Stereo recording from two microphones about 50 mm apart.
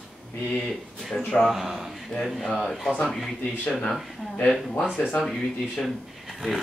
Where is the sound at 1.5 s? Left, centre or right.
Centre.